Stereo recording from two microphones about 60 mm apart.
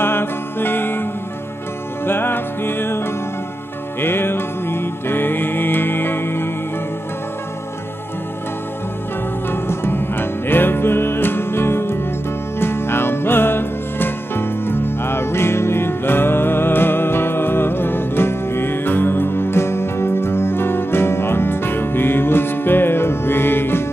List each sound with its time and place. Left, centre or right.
0.0 s music: left
2.0 s music: left
9.5 s music: left